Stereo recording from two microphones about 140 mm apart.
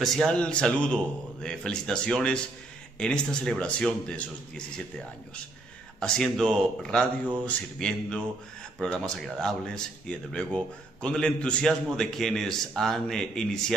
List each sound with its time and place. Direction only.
0.0 s speech: centre (ahead or behind)